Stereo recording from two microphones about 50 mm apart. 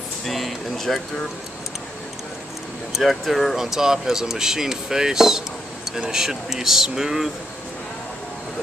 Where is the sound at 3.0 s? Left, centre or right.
Centre.